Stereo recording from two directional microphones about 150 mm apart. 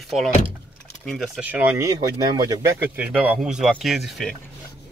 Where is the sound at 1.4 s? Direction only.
10° right (ahead or behind).